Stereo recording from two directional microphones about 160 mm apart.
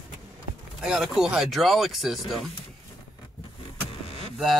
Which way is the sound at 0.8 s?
5° right (ahead or behind).